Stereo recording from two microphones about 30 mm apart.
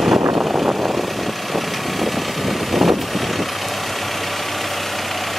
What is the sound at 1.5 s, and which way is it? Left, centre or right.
Vehicle, centre.